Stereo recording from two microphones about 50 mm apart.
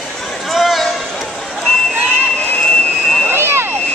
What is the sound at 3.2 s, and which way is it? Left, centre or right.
Vehicle, right.